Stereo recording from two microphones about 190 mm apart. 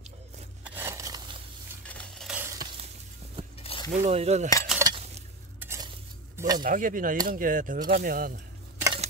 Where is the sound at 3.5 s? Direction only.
30° left (ahead or behind).